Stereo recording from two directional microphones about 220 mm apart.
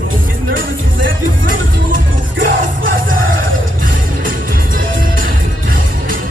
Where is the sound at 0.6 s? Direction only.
60° right (ahead or behind).